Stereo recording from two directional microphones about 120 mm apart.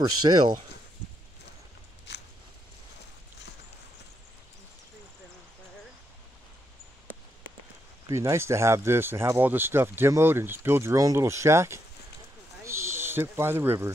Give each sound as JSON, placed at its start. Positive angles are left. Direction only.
{"t": 0.0, "sound": "speech", "side_deg": -35}
{"t": 8.1, "sound": "speech", "side_deg": -25}
{"t": 12.6, "sound": "owl", "side_deg": -20}